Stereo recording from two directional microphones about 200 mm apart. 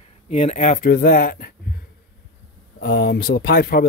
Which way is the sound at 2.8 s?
50° left (ahead or behind).